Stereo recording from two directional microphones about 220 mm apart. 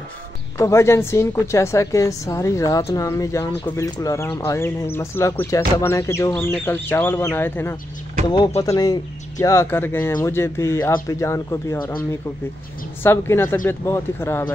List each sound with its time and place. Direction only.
0.6 s speech: 15° left (ahead or behind)
8.3 s speech: 25° left (ahead or behind)